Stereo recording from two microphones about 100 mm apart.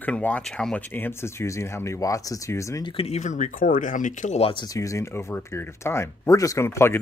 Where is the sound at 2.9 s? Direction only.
90° left.